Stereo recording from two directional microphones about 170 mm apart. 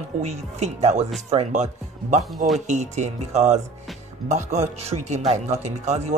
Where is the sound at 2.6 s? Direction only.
45° right (ahead or behind).